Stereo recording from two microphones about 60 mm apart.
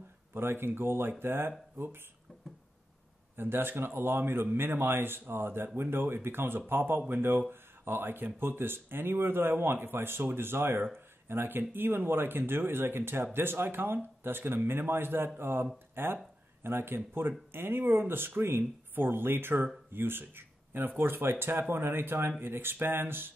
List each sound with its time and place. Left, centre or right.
0.3 s speech: right
3.3 s speech: right